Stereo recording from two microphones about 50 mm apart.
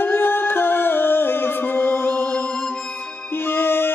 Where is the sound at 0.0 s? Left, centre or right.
Left.